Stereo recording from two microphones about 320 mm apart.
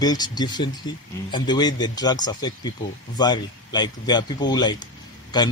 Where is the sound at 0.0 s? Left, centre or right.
Centre.